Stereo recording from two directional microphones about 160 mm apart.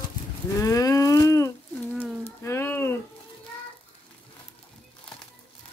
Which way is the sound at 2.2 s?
15° left (ahead or behind).